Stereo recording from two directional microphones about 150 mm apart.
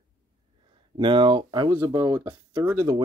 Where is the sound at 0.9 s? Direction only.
30° right (ahead or behind).